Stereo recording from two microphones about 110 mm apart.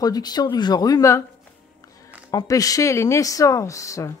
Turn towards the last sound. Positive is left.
turn(degrees=30)  # may be behind; listen again after turning